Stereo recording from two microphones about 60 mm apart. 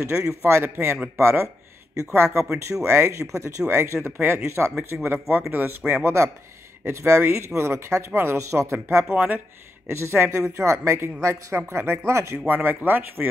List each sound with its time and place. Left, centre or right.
0.0 s speech: right
2.4 s speech: centre
2.8 s speech: right
5.5 s a man's voice: right
6.0 s speech: right
8.4 s speech: right
9.1 s a man's voice: right
9.8 s speech: right
12.4 s a man's voice: right